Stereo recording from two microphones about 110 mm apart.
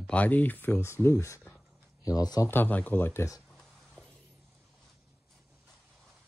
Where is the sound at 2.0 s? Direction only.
35° left (ahead or behind).